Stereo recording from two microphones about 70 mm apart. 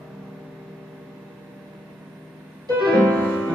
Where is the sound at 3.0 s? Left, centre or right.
Centre.